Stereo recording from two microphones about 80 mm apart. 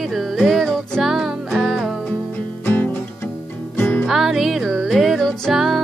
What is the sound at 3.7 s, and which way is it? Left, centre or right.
Music, left.